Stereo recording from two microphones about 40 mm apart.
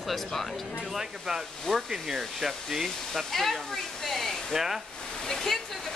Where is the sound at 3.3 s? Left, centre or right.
Centre.